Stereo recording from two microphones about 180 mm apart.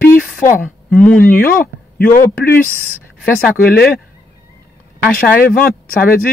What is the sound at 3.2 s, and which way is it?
Speech, 5° left (ahead or behind).